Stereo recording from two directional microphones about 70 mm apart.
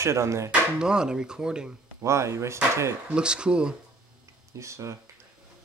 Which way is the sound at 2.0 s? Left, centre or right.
Right.